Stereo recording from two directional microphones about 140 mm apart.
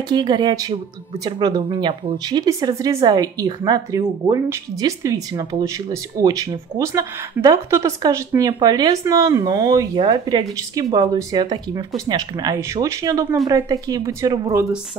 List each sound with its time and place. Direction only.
0.1 s a woman's voice: 30° right (ahead or behind)